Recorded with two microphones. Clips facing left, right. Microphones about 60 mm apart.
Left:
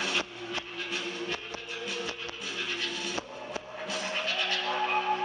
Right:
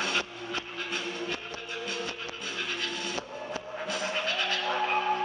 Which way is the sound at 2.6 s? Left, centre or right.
Centre.